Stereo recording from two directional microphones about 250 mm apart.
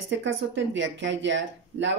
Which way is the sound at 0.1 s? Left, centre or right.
Right.